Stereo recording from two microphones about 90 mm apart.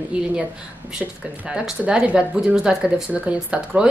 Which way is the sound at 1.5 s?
10° right (ahead or behind).